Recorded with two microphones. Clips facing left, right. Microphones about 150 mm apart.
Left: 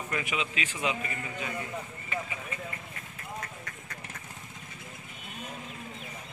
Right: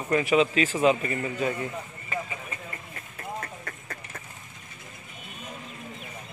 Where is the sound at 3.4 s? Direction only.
50° right (ahead or behind).